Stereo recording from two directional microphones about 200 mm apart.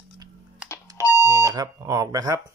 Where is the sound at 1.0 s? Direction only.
15° left (ahead or behind).